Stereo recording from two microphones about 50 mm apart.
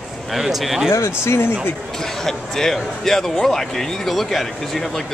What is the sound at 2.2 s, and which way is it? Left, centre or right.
Speech, centre.